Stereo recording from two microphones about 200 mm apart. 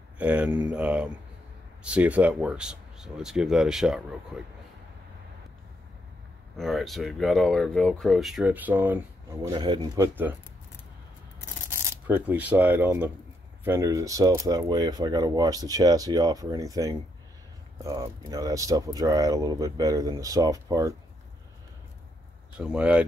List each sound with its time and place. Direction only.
0.2 s speech: 10° right (ahead or behind)
6.5 s speech: centre (ahead or behind)
11.4 s speech: 15° right (ahead or behind)
22.6 s speech: 5° right (ahead or behind)